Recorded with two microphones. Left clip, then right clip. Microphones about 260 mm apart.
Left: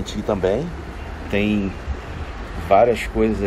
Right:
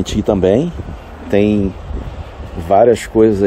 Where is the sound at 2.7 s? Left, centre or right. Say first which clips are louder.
Right 5 dB; right.